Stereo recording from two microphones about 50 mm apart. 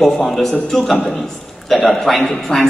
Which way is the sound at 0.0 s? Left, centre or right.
Centre.